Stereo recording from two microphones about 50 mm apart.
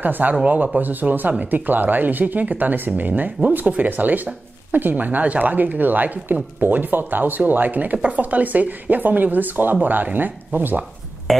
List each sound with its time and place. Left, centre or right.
0.0 s a woman's voice: right
11.3 s speech: centre